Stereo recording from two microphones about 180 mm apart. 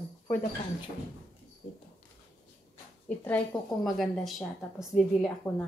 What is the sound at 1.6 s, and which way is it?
Speech, 30° left (ahead or behind).